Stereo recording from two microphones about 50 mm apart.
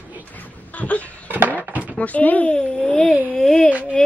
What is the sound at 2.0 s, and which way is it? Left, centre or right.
A woman's voice, left.